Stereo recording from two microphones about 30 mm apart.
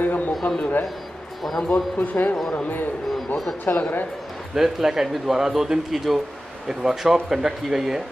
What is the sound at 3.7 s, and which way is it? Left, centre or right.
Speech, left.